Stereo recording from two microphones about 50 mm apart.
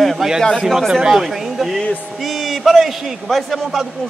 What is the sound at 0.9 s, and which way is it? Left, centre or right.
Speech, centre.